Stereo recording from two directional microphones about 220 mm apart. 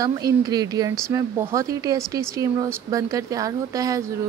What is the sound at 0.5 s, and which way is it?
Speech, 15° right (ahead or behind).